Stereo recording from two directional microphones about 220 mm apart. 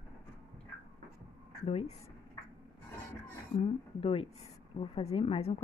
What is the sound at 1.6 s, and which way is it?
Speech, 30° left (ahead or behind).